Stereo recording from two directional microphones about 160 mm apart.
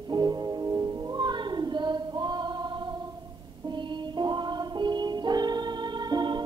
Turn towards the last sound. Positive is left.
turn(degrees=-25)  # may be behind; listen again after turning